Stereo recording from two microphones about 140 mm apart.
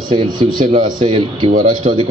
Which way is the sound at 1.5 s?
75° right (ahead or behind).